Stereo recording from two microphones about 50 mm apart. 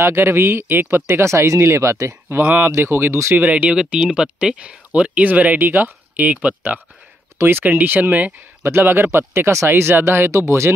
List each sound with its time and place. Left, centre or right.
0.0 s speech: right
1.2 s speech: right
2.4 s speech: right
2.8 s speech: right
3.3 s speech: right
3.7 s speech: centre
7.3 s speech: right
7.6 s speech: right
8.6 s speech: right